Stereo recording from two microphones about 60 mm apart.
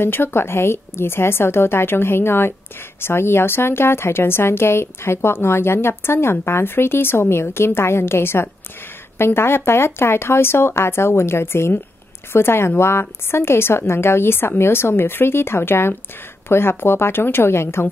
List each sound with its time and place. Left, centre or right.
0.0 s a woman's voice: left